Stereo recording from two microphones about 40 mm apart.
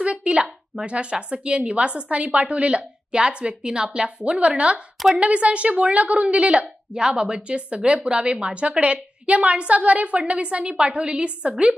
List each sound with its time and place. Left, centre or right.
0.0 s a woman's voice: right